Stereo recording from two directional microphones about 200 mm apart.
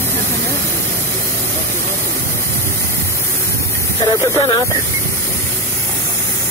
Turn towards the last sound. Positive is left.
turn(degrees=20)  # may be behind; listen again after turning